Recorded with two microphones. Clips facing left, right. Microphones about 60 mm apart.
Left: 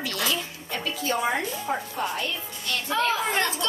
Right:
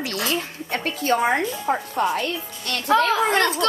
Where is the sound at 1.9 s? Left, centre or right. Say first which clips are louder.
Right 6 dB; right.